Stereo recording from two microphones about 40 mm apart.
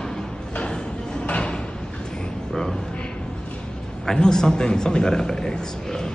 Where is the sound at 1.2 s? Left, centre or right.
Left.